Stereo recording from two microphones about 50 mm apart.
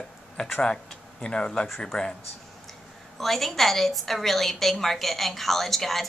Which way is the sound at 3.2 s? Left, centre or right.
Centre.